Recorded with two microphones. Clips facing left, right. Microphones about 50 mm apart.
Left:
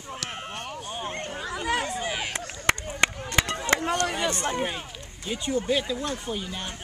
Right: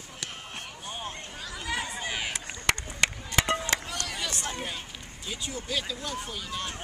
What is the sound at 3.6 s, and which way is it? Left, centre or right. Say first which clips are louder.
Chop: left 7 dB; left.